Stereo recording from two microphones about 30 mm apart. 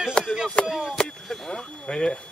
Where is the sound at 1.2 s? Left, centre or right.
Centre.